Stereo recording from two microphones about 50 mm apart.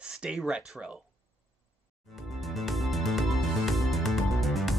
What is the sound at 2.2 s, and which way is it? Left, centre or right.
Music, centre.